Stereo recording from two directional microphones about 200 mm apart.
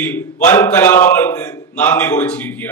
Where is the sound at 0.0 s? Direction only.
10° left (ahead or behind).